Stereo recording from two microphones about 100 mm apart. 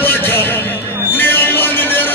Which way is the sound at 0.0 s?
20° left (ahead or behind).